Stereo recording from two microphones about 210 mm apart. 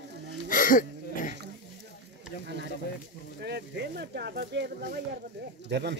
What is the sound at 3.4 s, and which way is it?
Speech, 50° right (ahead or behind).